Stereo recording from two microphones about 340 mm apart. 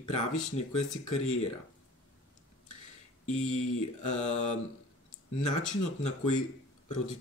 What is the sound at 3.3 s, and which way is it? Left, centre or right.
Speech, left.